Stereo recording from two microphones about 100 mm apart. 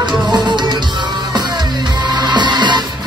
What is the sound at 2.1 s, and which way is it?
Music, 45° right (ahead or behind).